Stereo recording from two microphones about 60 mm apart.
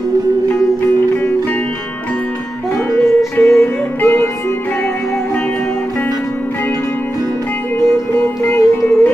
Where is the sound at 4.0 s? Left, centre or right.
Left.